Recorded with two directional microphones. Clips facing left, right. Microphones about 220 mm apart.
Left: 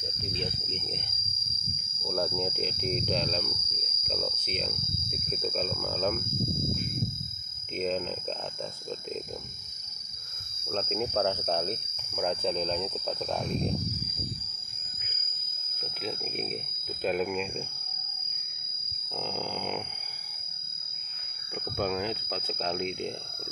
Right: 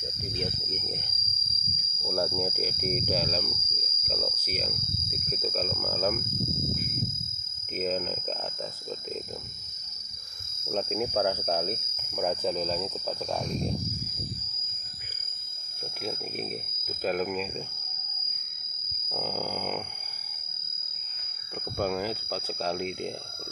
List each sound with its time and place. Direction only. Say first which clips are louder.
0.4 s speech: right 2 dB; 10° right (ahead or behind)
2.0 s speech: right 1 dB; centre (ahead or behind)
7.7 s speech: even; 5° right (ahead or behind)
10.9 s speech: even; 5° right (ahead or behind)
17.0 s speech: even; centre (ahead or behind)
19.0 s grunt: right 2 dB; 5° right (ahead or behind)
21.7 s speech: right 1 dB; 10° right (ahead or behind)